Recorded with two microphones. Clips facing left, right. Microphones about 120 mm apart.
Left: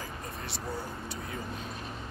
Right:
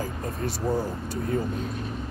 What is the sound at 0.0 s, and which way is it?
Speech, 45° right (ahead or behind).